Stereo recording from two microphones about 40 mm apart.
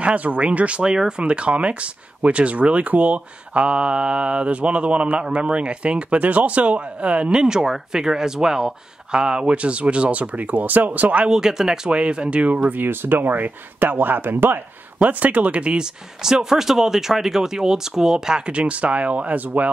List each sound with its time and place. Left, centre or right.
0.0 s speech: right
0.8 s speech: centre
1.2 s speech: right
11.2 s speech: centre
11.9 s speech: right
12.8 s speech: right
15.0 s speech: right
15.8 s speech: centre
18.5 s speech: right